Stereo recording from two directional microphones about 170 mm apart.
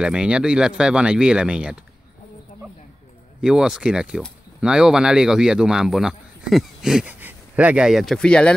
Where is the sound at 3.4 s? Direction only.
5° right (ahead or behind).